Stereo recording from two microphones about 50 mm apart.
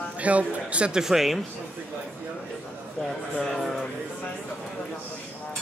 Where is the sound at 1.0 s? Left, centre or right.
Centre.